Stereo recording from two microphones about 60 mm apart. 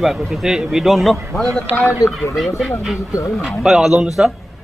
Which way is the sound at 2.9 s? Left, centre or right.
Left.